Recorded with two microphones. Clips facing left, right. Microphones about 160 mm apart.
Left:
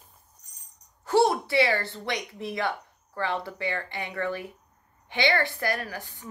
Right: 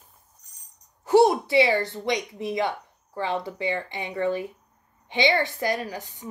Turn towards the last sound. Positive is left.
turn(degrees=-20)  # may be behind; listen again after turning